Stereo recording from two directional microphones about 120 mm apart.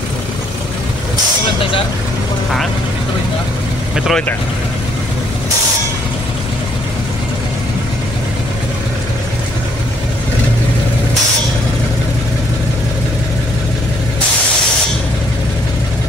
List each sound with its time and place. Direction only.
3.9 s speech: 5° right (ahead or behind)